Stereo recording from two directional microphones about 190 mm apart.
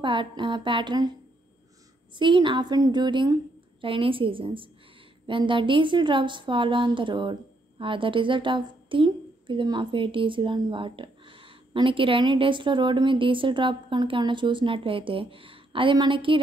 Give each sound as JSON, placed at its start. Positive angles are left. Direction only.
{"t": 0.0, "sound": "a woman's voice", "side_deg": -25}
{"t": 2.1, "sound": "a woman's voice", "side_deg": -25}